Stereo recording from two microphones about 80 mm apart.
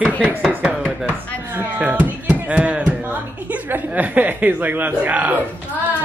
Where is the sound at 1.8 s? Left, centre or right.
Centre.